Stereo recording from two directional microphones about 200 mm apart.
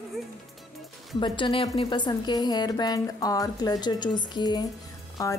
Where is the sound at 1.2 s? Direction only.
25° left (ahead or behind).